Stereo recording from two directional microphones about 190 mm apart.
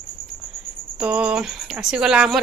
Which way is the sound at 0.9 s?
5° right (ahead or behind).